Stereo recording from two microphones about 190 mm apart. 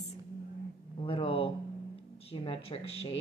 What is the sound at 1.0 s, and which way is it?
Speech, 30° left (ahead or behind).